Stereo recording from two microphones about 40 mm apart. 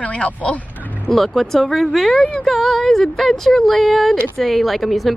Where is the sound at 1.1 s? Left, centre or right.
Centre.